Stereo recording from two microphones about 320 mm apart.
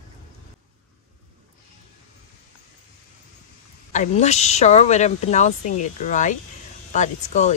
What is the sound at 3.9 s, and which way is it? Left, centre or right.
Speech, left.